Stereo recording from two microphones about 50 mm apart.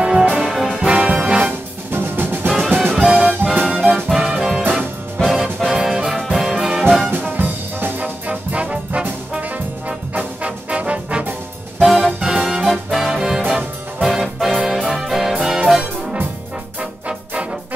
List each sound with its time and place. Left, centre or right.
0.0 s brass instrument: right
0.4 s brass instrument: centre
0.7 s brass instrument: right
1.9 s music: right
2.5 s music: centre
3.4 s music: right
3.9 s music: centre
7.1 s brass instrument: right
11.8 s music: centre